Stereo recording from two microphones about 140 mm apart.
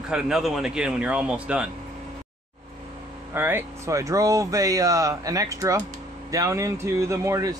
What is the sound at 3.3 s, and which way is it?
Speech, 15° right (ahead or behind).